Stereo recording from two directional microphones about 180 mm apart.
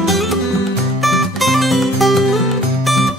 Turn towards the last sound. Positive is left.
turn(degrees=0)  # may be behind; listen again after turning